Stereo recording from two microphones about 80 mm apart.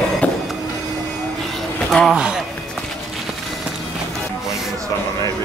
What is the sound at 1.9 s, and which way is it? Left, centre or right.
Speech, centre.